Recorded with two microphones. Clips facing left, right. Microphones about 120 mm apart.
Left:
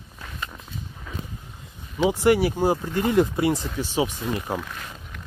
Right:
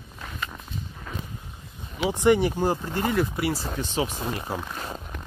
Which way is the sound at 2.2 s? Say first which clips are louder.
Even; 5° left (ahead or behind).